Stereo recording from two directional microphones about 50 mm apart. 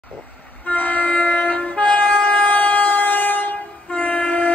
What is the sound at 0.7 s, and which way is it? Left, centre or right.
Train, left.